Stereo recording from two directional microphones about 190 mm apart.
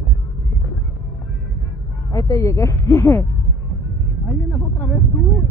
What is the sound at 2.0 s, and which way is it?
Speech, 20° left (ahead or behind).